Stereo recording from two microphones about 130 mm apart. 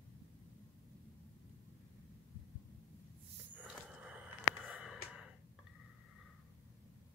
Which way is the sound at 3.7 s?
10° right (ahead or behind).